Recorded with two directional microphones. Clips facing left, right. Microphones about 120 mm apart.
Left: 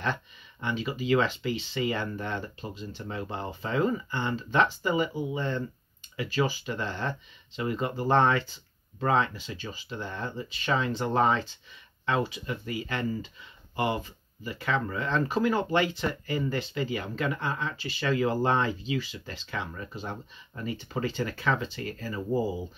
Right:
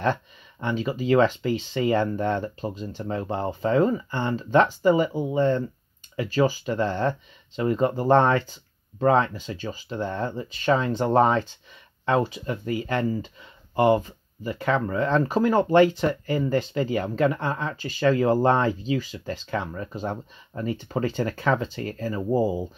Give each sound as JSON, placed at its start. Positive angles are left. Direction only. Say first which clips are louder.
{"t": 0.0, "sound": "speech", "louder": "right 7 dB", "side_deg": -45}